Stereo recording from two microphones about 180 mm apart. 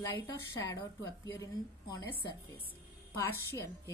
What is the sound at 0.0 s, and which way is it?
A woman's voice, 20° left (ahead or behind).